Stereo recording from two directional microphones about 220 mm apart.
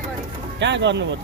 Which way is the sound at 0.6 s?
55° right (ahead or behind).